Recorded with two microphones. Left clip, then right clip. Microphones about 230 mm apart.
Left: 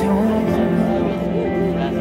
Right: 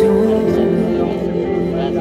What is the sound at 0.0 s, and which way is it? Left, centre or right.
Music, centre.